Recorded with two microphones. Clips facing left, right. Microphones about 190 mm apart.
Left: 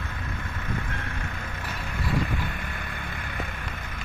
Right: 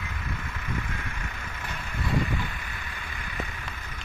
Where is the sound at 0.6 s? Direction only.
60° left (ahead or behind).